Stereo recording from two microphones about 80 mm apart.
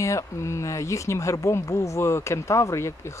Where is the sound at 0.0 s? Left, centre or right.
Left.